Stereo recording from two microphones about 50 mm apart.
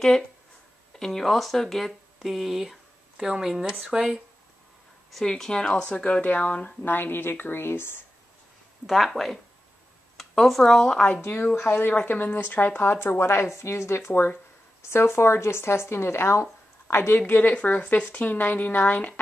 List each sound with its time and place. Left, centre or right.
0.9 s speech: centre
5.2 s speech: centre
6.2 s speech: left
6.8 s speech: left
8.8 s speech: centre
10.5 s speech: centre
11.1 s speech: left
11.9 s speech: left
13.2 s speech: left
17.3 s speech: left